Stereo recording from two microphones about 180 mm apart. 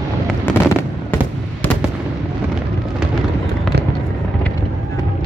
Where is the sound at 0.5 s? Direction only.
10° left (ahead or behind).